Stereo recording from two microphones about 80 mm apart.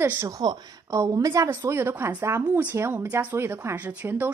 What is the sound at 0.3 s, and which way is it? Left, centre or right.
Speech, right.